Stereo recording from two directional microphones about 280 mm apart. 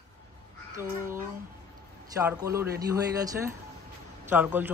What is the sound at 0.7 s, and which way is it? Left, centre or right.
Speech, centre.